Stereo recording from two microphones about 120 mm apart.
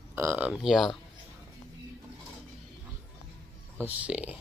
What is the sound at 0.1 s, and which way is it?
Speech, 20° right (ahead or behind).